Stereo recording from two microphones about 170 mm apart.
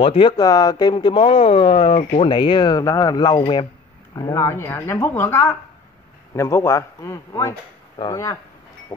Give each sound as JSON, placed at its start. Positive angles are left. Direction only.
{"t": 0.0, "sound": "speech", "side_deg": 35}
{"t": 0.4, "sound": "speech", "side_deg": 20}